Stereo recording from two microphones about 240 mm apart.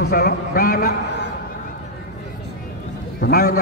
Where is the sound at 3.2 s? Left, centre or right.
Left.